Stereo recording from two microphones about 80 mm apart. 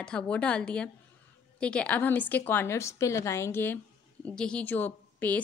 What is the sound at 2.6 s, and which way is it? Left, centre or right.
A woman's voice, left.